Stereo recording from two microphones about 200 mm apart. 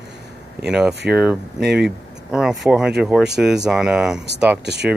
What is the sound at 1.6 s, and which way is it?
Speech, 55° right (ahead or behind).